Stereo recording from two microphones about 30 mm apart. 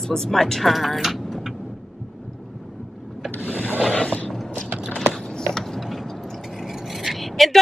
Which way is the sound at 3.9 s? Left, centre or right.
Left.